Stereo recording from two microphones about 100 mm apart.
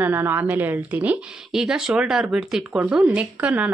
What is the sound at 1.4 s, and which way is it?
A woman's voice, 5° right (ahead or behind).